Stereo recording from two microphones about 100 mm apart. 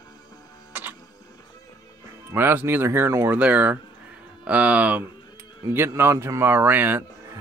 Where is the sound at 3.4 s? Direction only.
15° right (ahead or behind).